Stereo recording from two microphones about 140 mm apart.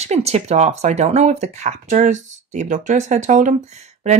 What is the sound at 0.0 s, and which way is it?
Speech, 50° right (ahead or behind).